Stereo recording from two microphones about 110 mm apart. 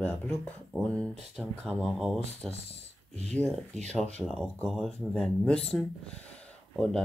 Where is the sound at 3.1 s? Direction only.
90° right.